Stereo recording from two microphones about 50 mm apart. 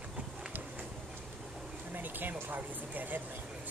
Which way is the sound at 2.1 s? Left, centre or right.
Right.